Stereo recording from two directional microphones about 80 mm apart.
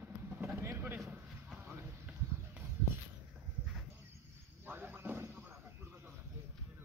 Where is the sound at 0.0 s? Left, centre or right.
Right.